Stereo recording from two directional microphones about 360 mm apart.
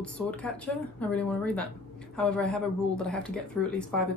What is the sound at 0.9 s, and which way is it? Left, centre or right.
Speech, centre.